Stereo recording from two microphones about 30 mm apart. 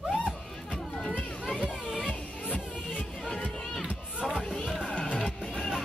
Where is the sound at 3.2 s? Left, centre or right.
Centre.